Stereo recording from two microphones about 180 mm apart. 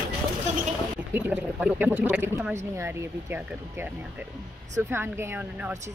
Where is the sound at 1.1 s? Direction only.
5° right (ahead or behind).